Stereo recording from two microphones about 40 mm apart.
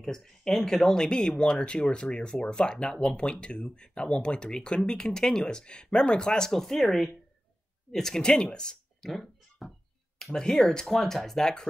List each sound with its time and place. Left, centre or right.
0.0 s speech: centre
9.0 s a sound: centre
10.3 s speech: centre